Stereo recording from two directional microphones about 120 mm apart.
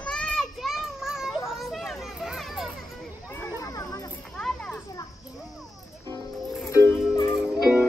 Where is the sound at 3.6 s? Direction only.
30° left (ahead or behind).